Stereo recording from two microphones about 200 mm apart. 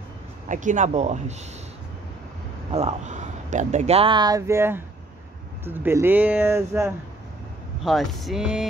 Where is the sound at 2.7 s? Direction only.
30° right (ahead or behind); by 6.9 s 15° right (ahead or behind).